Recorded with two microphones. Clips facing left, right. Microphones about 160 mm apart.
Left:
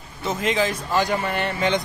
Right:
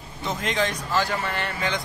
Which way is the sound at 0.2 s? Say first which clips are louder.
Left 3 dB; 5° left (ahead or behind).